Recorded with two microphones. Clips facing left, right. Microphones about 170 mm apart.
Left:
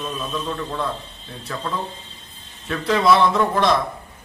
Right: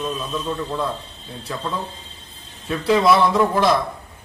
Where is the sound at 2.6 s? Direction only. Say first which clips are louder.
Right 1 dB; 10° right (ahead or behind).